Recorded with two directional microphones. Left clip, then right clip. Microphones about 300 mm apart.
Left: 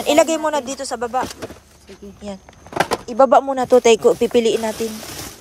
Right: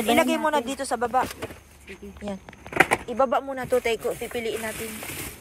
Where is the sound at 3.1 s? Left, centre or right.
Centre.